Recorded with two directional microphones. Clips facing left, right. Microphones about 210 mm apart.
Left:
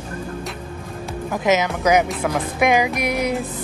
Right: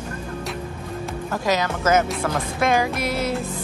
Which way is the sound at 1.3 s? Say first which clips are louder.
Left 4 dB; 20° left (ahead or behind).